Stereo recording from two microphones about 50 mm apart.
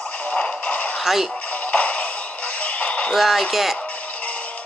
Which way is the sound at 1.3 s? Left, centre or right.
Left.